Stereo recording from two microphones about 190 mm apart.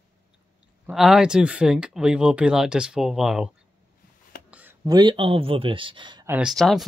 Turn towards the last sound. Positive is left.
turn(degrees=0)  # may be behind; listen again after turning